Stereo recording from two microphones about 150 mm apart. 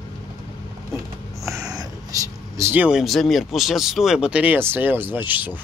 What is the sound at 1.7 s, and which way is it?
Speech, 25° right (ahead or behind).